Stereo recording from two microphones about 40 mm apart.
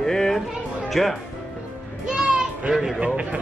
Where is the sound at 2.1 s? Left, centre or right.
Centre.